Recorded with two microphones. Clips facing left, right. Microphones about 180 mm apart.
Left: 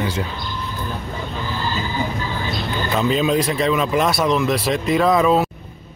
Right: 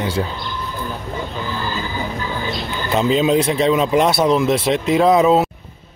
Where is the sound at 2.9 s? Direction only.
25° right (ahead or behind).